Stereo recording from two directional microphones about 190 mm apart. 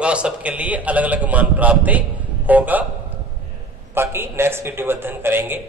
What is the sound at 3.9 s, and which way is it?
A man's voice, 10° right (ahead or behind).